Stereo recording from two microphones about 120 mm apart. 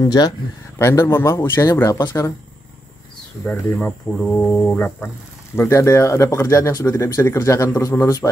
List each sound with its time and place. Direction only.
0.0 s speech: 35° left (ahead or behind)
0.7 s speech: 20° left (ahead or behind)
3.4 s speech: 10° left (ahead or behind)
5.6 s speech: 25° left (ahead or behind)